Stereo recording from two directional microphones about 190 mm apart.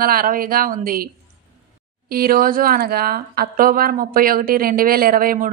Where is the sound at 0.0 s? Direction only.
50° right (ahead or behind).